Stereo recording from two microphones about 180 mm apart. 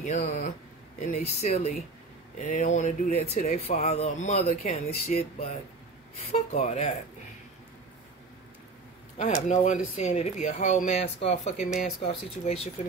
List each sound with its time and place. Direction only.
0.0 s speech: 45° left (ahead or behind)
9.2 s speech: 40° left (ahead or behind)